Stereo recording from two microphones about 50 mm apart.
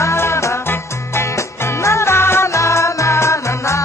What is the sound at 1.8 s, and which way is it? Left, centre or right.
Music, left.